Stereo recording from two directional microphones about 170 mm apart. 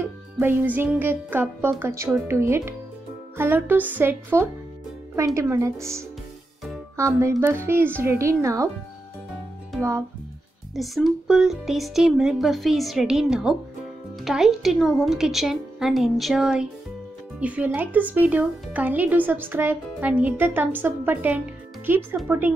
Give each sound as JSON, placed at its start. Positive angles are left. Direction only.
{"t": 0.0, "sound": "music", "side_deg": -10}
{"t": 1.8, "sound": "a woman's voice", "side_deg": -15}
{"t": 9.8, "sound": "speech", "side_deg": -15}
{"t": 10.7, "sound": "a woman's voice", "side_deg": 0}